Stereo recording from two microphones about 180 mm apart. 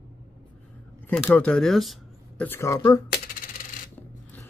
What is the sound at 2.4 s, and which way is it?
Speech, 15° left (ahead or behind).